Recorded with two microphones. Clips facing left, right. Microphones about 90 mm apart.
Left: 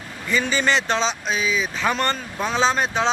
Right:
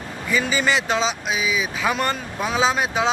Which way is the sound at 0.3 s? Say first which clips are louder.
Even; 5° right (ahead or behind).